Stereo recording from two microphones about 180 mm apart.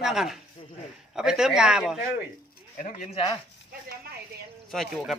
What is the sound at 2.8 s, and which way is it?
Speech, 40° left (ahead or behind).